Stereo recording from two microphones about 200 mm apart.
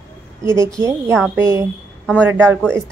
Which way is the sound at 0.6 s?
15° right (ahead or behind).